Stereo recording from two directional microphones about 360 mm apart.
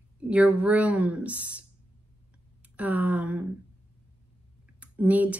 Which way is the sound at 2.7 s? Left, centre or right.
Centre.